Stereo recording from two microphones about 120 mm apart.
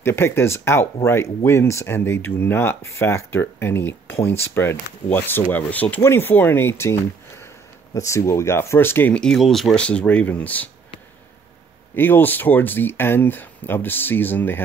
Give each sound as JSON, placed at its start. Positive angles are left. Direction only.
{"t": 0.0, "sound": "speech", "side_deg": 20}
{"t": 11.9, "sound": "speech", "side_deg": 15}